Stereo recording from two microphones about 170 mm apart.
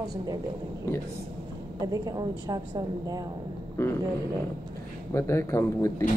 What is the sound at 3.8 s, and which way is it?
Speech, 15° left (ahead or behind).